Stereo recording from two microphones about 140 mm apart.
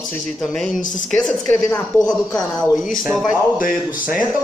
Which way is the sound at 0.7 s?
65° left (ahead or behind).